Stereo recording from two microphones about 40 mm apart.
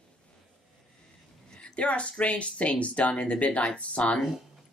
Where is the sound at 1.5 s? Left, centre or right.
Left.